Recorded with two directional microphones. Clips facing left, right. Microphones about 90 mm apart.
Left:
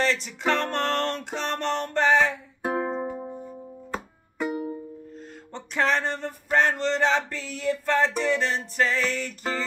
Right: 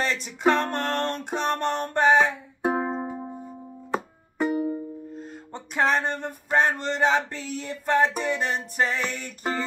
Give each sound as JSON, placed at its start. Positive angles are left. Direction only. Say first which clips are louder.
{"t": 0.0, "sound": "music", "louder": "right 2 dB", "side_deg": -15}
{"t": 4.4, "sound": "music", "louder": "right 4 dB", "side_deg": -35}
{"t": 5.5, "sound": "a sound", "louder": "right 1 dB", "side_deg": -15}